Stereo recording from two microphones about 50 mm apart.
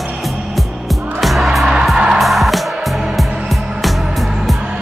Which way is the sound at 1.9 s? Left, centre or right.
Centre.